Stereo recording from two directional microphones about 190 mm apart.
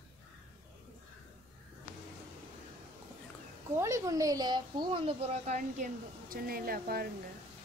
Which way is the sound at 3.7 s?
15° right (ahead or behind).